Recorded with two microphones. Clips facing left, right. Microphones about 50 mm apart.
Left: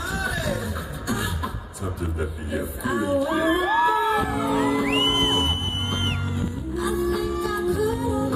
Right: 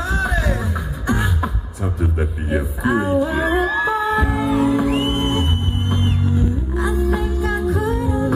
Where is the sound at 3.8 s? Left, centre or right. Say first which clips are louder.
Right 2 dB; right.